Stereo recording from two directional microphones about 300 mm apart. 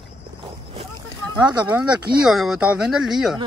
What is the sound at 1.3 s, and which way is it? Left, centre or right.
Speech, centre.